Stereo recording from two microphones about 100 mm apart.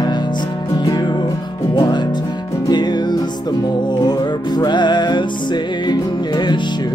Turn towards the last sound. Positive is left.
turn(degrees=45)  # may be behind; listen again after turning